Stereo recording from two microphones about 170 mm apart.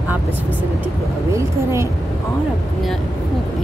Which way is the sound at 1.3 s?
15° right (ahead or behind).